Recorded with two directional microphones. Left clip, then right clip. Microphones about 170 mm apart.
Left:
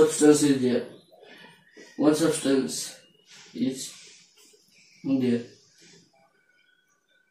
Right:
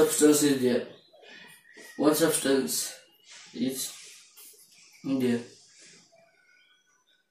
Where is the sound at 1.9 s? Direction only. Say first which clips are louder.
Left 1 dB; 5° right (ahead or behind).